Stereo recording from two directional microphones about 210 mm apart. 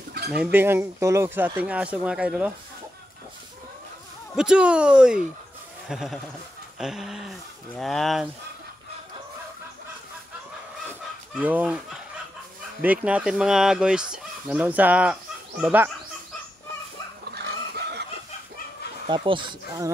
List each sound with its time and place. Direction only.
0.3 s speech: 5° right (ahead or behind)
4.4 s speech: 5° right (ahead or behind)
10.9 s chicken: 5° right (ahead or behind)
12.8 s speech: 5° right (ahead or behind)
17.3 s pig: 50° right (ahead or behind)
19.0 s speech: 25° right (ahead or behind)